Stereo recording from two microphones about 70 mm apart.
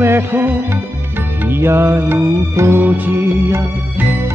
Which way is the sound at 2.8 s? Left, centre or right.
Right.